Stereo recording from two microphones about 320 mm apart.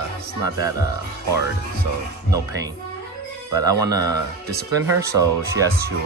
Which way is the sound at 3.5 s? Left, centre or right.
Centre.